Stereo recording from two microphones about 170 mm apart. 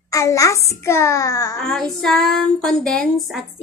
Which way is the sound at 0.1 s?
20° left (ahead or behind).